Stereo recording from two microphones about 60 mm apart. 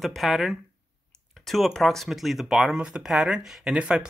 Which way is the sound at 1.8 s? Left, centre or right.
Centre.